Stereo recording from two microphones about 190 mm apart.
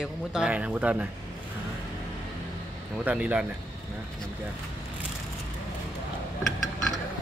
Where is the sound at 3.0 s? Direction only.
5° right (ahead or behind).